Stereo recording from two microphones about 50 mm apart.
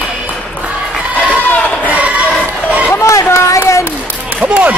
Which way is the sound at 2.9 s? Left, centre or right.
Left.